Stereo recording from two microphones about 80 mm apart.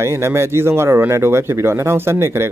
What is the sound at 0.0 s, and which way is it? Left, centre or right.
Speech, right.